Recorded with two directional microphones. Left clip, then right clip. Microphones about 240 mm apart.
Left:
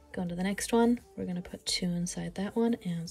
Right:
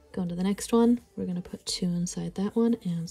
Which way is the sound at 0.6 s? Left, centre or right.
Centre.